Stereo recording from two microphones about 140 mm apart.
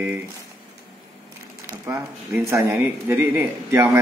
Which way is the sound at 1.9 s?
20° right (ahead or behind).